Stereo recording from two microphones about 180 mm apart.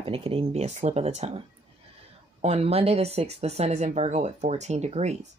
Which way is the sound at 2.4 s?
35° right (ahead or behind).